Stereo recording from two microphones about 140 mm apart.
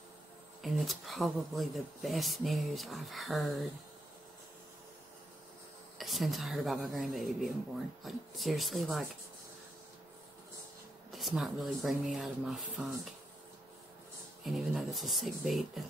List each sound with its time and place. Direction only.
0.6 s speech: centre (ahead or behind)
5.9 s speech: centre (ahead or behind)
11.1 s speech: centre (ahead or behind)
14.4 s speech: centre (ahead or behind)